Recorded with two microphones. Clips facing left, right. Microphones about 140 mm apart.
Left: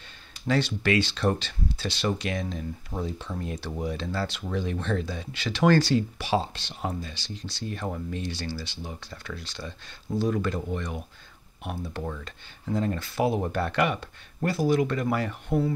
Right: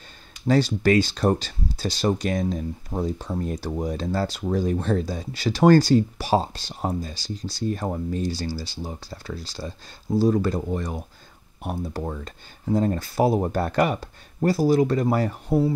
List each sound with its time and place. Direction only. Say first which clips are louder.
0.5 s speech: right 5 dB; 40° right (ahead or behind)